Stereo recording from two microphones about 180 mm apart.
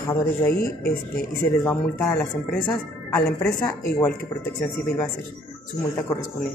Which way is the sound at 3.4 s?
15° left (ahead or behind).